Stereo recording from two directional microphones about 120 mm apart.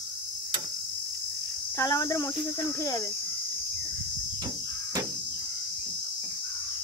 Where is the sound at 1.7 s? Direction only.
25° left (ahead or behind).